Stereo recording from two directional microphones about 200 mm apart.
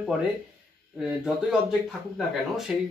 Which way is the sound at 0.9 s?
5° right (ahead or behind).